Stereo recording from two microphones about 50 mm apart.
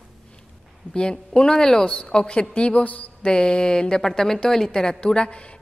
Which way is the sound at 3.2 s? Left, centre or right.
Centre.